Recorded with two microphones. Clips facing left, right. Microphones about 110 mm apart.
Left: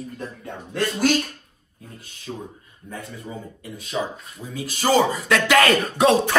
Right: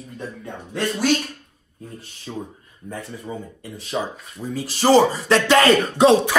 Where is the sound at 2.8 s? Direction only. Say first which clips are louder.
Right 3 dB; 35° right (ahead or behind).